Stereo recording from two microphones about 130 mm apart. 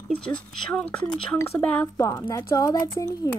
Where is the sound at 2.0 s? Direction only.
20° left (ahead or behind).